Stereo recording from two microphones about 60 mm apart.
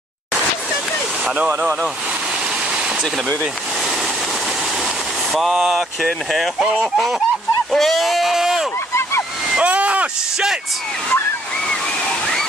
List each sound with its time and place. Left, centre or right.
1.2 s speech: right
5.3 s speech: centre
9.6 s a sound: right
11.6 s waterfall: centre